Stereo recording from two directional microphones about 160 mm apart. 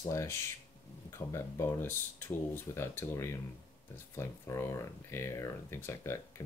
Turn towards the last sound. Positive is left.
turn(degrees=15)  # may be behind; listen again after turning